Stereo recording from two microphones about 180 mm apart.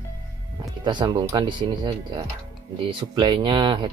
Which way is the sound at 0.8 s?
25° right (ahead or behind).